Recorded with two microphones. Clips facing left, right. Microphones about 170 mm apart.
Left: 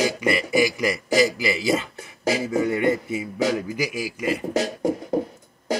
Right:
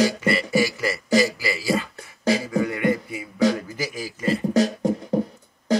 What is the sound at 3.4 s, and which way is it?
Speech, 15° left (ahead or behind).